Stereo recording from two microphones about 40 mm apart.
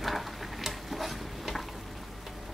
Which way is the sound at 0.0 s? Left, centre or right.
Centre.